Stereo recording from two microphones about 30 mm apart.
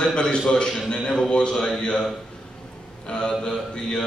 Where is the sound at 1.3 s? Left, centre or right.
Left.